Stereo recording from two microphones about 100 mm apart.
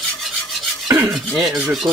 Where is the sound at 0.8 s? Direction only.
40° right (ahead or behind).